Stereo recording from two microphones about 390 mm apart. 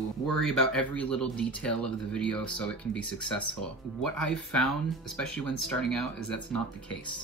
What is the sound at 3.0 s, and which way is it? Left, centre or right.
Speech, left.